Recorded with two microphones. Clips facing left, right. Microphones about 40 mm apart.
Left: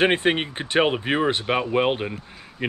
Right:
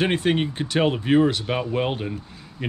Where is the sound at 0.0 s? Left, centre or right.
Left.